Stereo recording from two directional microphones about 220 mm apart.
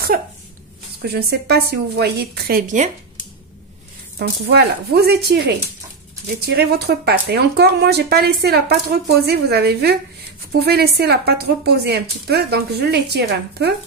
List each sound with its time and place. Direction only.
1.0 s speech: 45° right (ahead or behind)
4.2 s speech: 45° right (ahead or behind)